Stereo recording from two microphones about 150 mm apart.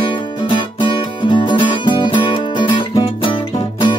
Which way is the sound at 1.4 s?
30° left (ahead or behind).